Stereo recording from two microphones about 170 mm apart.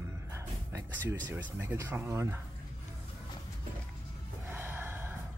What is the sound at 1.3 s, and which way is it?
Speech, 10° right (ahead or behind).